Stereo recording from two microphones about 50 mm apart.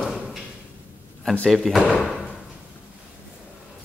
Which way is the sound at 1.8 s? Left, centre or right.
Right.